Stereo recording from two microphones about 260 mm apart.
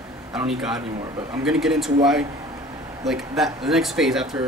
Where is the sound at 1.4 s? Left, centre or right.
Centre.